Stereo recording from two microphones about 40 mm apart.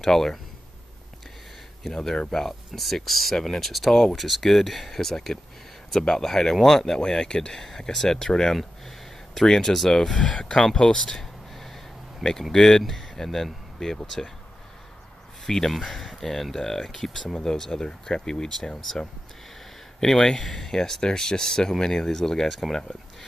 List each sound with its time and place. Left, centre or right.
0.0 s speech: centre
1.8 s speech: centre
10.1 s speech: left
15.4 s speech: centre